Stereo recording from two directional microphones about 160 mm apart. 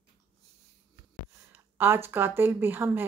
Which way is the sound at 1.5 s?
15° right (ahead or behind).